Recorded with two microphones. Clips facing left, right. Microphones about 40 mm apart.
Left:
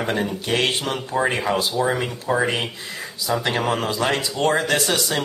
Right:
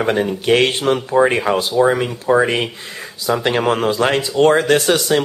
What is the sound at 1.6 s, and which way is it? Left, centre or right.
Speech, centre.